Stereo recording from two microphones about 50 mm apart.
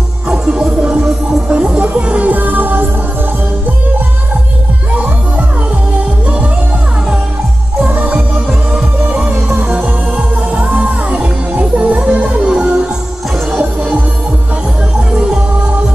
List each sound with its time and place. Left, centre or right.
0.3 s music: centre; by 2.9 s right
7.9 s music: right
8.7 s music: right
10.5 s music: right